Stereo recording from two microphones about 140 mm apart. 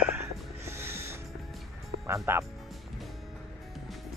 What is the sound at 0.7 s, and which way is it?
Music, 20° right (ahead or behind).